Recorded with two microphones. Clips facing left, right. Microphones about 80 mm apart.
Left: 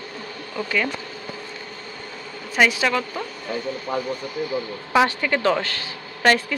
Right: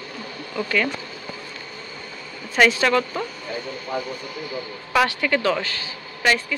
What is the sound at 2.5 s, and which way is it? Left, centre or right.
Speech, centre.